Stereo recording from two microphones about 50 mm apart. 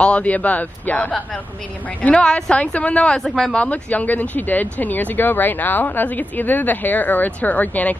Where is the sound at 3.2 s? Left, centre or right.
Centre.